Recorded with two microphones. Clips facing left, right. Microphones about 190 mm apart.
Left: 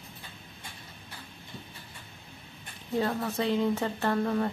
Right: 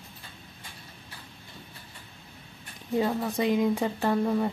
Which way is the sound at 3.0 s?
15° right (ahead or behind).